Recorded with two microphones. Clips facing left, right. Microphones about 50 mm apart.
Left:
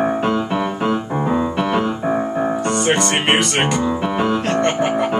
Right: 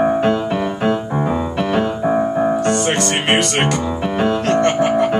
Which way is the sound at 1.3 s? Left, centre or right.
Centre.